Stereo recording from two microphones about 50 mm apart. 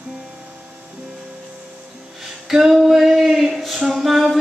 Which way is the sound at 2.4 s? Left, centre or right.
Centre.